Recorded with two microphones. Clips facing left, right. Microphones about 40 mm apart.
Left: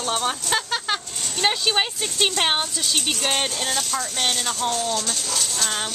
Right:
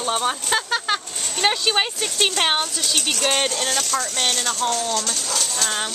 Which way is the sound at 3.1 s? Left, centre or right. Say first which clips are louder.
Right 5 dB; right.